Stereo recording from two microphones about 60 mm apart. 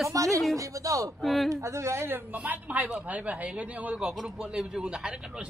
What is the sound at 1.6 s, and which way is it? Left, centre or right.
Speech, right.